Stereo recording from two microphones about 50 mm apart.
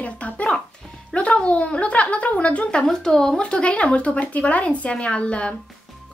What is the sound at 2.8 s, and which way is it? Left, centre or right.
Speech, centre.